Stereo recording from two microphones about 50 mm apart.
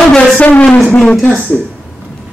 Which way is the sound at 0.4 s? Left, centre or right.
Left.